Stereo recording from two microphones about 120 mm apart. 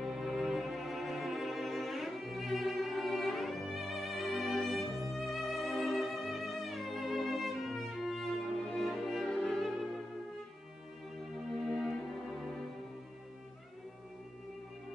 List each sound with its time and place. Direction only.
0.0 s cello: centre (ahead or behind)
8.7 s music: centre (ahead or behind)
11.7 s music: centre (ahead or behind)